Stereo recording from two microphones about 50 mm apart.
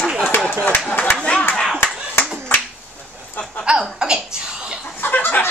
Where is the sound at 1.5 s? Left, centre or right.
Centre.